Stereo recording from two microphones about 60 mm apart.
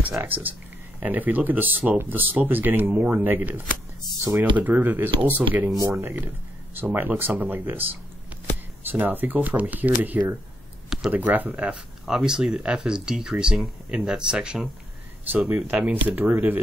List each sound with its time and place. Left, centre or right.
0.3 s speech: right
12.1 s speech: centre
15.3 s speech: right